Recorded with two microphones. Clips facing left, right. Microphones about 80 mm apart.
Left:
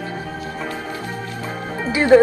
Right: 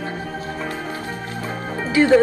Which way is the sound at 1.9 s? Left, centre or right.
Left.